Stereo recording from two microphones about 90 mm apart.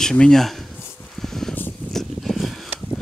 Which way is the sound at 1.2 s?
5° left (ahead or behind).